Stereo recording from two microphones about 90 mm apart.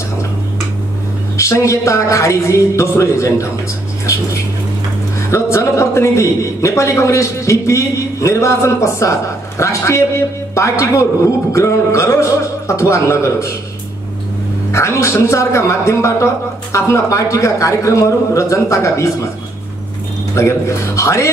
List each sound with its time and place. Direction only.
1.3 s a man's voice: 35° left (ahead or behind)
5.3 s a man's voice: 35° left (ahead or behind)
14.7 s a man's voice: 30° left (ahead or behind)
20.3 s a man's voice: 30° left (ahead or behind)